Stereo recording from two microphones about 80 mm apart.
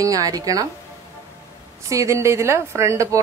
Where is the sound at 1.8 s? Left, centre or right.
Right.